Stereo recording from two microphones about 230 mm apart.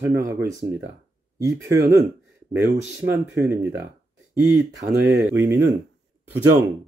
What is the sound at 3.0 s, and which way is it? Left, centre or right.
Speech, centre.